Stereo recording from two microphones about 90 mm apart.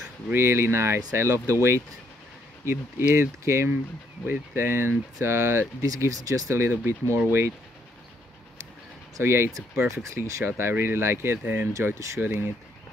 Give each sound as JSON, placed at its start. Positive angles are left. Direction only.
{"t": 0.3, "sound": "speech", "side_deg": -30}
{"t": 3.2, "sound": "speech", "side_deg": -30}
{"t": 6.7, "sound": "speech", "side_deg": -20}
{"t": 9.1, "sound": "speech", "side_deg": -30}
{"t": 11.7, "sound": "speech", "side_deg": -35}
{"t": 12.2, "sound": "speech", "side_deg": -25}